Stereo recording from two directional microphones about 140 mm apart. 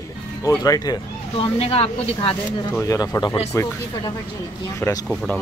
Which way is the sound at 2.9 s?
25° left (ahead or behind).